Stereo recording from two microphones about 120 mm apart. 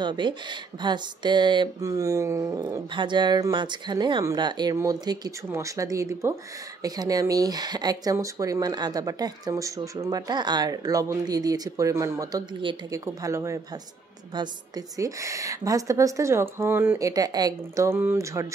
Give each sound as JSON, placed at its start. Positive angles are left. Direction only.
{"t": 0.0, "sound": "speech", "side_deg": -40}
{"t": 1.8, "sound": "a woman's voice", "side_deg": -30}
{"t": 2.9, "sound": "a woman's voice", "side_deg": -40}
{"t": 12.9, "sound": "a woman's voice", "side_deg": -25}
{"t": 15.0, "sound": "a woman's voice", "side_deg": -25}
{"t": 17.1, "sound": "a woman's voice", "side_deg": -35}